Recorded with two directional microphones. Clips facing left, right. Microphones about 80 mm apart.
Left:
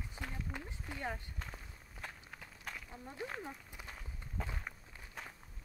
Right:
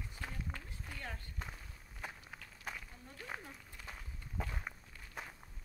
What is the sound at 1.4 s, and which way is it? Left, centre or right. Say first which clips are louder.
Walk: even; centre.